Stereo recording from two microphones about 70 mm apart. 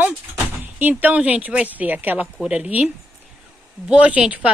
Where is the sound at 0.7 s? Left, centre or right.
Right.